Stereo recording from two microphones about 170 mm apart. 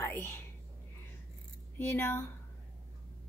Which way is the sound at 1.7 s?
10° left (ahead or behind).